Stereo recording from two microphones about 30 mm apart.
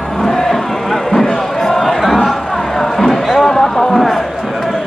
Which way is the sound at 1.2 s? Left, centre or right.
Centre.